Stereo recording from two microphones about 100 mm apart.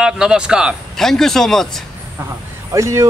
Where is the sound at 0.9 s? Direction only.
5° left (ahead or behind).